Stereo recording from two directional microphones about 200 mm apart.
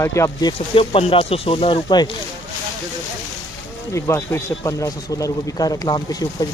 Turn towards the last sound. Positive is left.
turn(degrees=20)  # may be behind; listen again after turning